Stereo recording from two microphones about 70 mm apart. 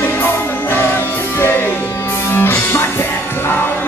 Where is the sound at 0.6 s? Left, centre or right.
Left.